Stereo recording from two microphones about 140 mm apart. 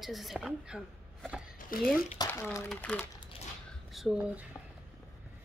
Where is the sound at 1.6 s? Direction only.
80° left.